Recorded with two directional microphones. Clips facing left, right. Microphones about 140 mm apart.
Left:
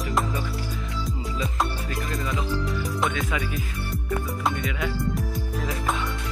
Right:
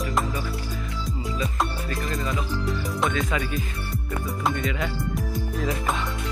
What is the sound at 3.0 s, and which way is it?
Speech, centre (ahead or behind).